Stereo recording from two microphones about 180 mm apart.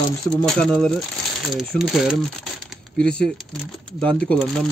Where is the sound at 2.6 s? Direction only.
5° left (ahead or behind).